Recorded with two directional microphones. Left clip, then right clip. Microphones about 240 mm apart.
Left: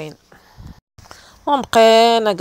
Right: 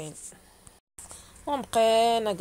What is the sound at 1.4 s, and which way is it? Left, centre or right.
Speech, left.